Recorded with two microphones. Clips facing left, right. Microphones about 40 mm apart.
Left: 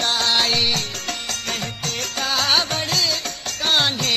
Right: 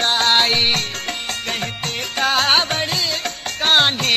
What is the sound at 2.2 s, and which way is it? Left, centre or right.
Music, right.